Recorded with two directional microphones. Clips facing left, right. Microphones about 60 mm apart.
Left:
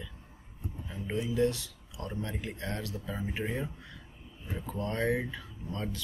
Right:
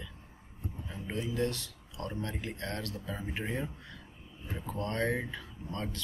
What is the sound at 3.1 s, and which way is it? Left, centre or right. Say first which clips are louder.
Speech: left 3 dB; centre.